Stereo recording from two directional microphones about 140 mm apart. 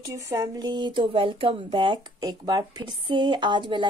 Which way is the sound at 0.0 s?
25° right (ahead or behind).